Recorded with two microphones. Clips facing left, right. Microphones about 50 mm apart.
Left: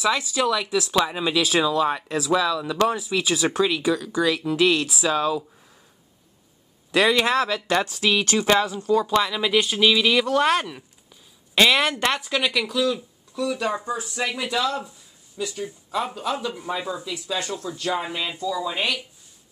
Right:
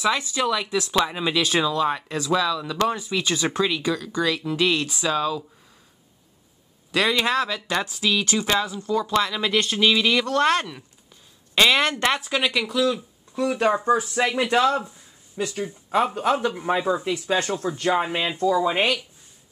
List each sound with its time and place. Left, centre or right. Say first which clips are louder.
0.0 s speech: left 1 dB; centre
6.9 s speech: left 2 dB; centre
8.0 s speech: left 2 dB; left
9.1 s speech: left 1 dB; centre
12.0 s speech: right 1 dB; centre
13.3 s speech: right 4 dB; right
18.4 s speech: right 6 dB; right